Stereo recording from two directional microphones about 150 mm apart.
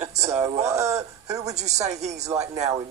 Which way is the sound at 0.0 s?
50° right (ahead or behind).